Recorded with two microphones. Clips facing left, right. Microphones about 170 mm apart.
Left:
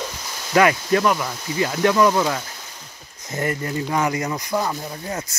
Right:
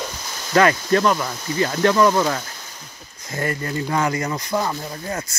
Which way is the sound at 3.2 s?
20° left (ahead or behind).